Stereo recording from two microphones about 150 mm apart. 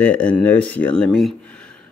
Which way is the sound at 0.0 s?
10° left (ahead or behind).